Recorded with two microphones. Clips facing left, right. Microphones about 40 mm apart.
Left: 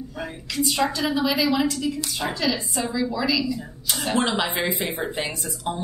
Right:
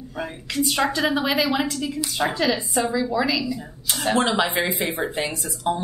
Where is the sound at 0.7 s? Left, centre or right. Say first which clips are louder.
Right 2 dB; right.